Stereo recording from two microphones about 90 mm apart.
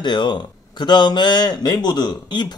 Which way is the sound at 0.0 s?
55° left (ahead or behind).